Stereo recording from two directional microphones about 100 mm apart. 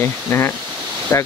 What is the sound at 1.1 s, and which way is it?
Speech, 30° left (ahead or behind).